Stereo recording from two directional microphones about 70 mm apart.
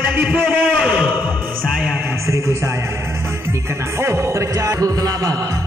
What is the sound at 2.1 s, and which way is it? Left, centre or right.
Speech, right.